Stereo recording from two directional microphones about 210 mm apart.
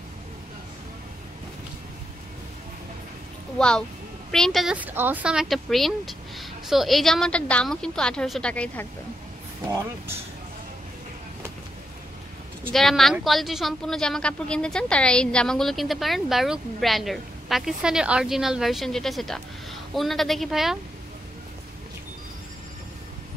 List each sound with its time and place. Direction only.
3.5 s speech: 5° left (ahead or behind)
12.7 s speech: centre (ahead or behind)